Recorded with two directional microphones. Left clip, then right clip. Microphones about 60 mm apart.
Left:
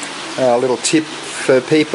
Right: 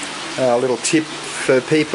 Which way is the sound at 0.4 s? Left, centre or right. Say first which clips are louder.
Left 3 dB; centre.